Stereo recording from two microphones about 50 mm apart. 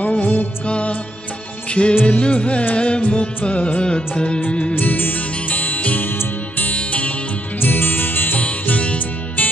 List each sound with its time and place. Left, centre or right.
0.0 s music: left
1.7 s music of bollywood: left
2.0 s music: left
4.7 s music: left
6.7 s music: left
7.6 s music: left
8.4 s music: left